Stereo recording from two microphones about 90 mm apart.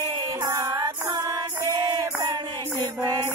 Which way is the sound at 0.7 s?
45° right (ahead or behind).